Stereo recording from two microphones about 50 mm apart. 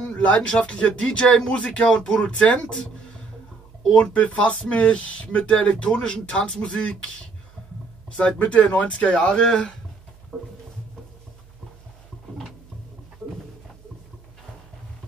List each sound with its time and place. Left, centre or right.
0.0 s speech: left
3.9 s speech: left
10.3 s a sound: centre